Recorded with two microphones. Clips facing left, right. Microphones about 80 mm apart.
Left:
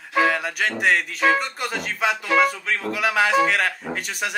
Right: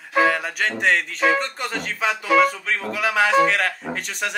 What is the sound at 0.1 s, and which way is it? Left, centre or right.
Speech, centre.